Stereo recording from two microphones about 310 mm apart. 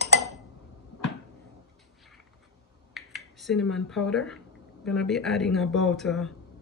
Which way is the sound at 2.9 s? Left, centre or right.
Centre.